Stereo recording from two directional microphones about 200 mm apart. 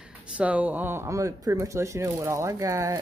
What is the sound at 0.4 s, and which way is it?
Speech, 5° right (ahead or behind).